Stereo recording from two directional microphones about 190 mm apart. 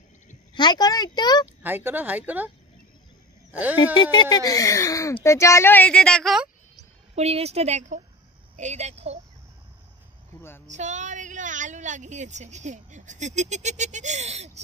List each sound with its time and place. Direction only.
0.6 s speech: 20° left (ahead or behind)
1.6 s speech: 10° right (ahead or behind)
3.9 s a woman's voice: 25° left (ahead or behind); by 6.5 s centre (ahead or behind)
7.2 s a woman's voice: 35° right (ahead or behind)
10.7 s a woman's voice: 40° right (ahead or behind)